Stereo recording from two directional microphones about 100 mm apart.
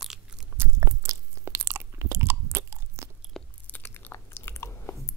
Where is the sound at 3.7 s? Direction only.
20° left (ahead or behind).